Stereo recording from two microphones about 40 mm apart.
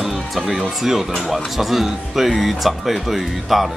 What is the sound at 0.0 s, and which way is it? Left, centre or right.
Speech, centre.